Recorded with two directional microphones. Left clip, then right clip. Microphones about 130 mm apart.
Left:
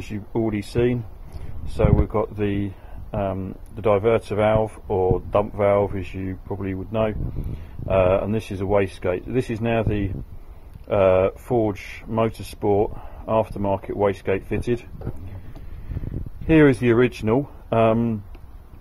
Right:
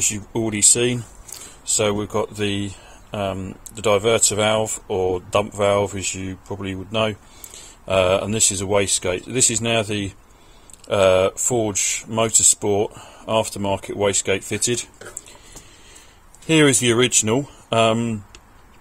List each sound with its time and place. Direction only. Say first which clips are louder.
0.1 s speech: right 1 dB; 20° right (ahead or behind)
2.3 s speech: right 1 dB; 10° right (ahead or behind)
16.4 s speech: even; 10° right (ahead or behind)